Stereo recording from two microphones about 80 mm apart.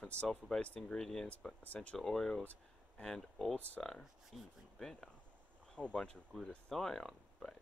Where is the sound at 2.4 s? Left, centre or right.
Centre.